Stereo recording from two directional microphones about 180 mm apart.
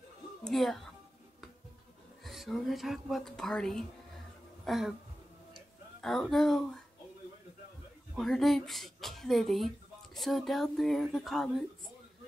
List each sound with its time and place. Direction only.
0.4 s speech: centre (ahead or behind)
2.2 s a woman's voice: centre (ahead or behind)
5.9 s a woman's voice: centre (ahead or behind)
8.2 s a woman's voice: centre (ahead or behind)